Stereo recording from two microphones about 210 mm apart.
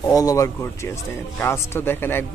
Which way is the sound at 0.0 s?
15° left (ahead or behind).